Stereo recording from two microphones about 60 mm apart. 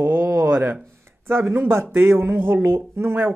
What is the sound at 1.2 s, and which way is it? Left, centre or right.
Speech, right.